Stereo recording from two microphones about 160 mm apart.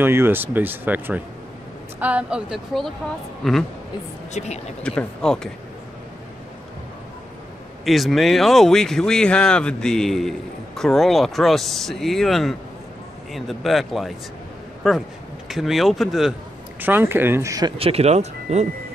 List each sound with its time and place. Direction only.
0.0 s speech: 15° right (ahead or behind); by 3.6 s 5° left (ahead or behind)
4.3 s speech: 45° left (ahead or behind)
4.8 s speech: 5° left (ahead or behind)
7.8 s a man's voice: centre (ahead or behind)
16.8 s speech: 15° right (ahead or behind)
17.7 s speech: 40° right (ahead or behind)